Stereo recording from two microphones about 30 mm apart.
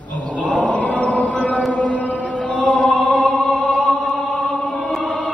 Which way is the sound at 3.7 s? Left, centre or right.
Left.